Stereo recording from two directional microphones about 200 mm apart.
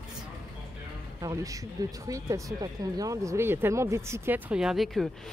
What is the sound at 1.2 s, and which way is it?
Speech, 15° right (ahead or behind).